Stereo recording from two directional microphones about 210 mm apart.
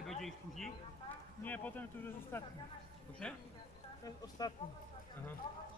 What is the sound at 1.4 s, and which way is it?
Speech, 10° left (ahead or behind).